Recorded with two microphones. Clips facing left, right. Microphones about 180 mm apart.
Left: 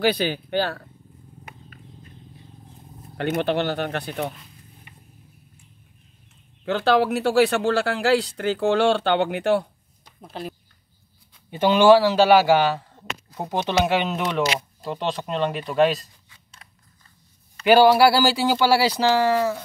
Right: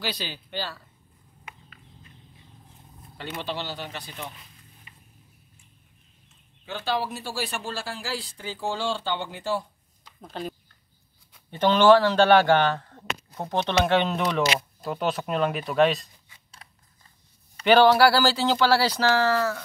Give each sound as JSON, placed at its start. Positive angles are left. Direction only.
{"t": 0.0, "sound": "speech", "side_deg": 55}
{"t": 3.2, "sound": "speech", "side_deg": 55}
{"t": 4.9, "sound": "vehicle", "side_deg": 60}
{"t": 6.6, "sound": "speech", "side_deg": 70}
{"t": 10.2, "sound": "speech", "side_deg": 5}
{"t": 11.5, "sound": "speech", "side_deg": 10}
{"t": 17.6, "sound": "speech", "side_deg": 10}